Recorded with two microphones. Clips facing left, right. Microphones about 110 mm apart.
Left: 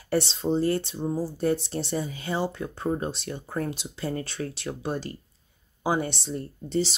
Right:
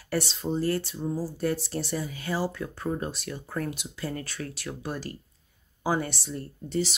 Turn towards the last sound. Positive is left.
turn(degrees=25)  # may be behind; listen again after turning